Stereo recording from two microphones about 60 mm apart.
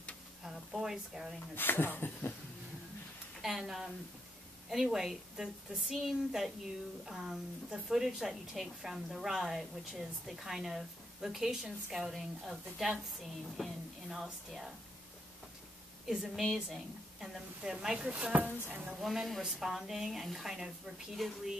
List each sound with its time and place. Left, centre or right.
0.4 s sizzle: centre
1.5 s speech: left
3.4 s a woman's voice: centre
13.6 s a sound: centre
16.1 s a woman's voice: centre
17.6 s a woman's voice: centre
18.9 s a woman's voice: centre